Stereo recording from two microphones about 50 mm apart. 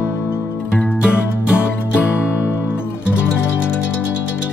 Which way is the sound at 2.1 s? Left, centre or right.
Left.